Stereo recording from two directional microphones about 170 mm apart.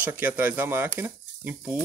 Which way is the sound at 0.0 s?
10° right (ahead or behind).